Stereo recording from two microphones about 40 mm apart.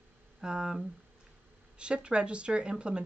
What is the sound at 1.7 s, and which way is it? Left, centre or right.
Speech, right.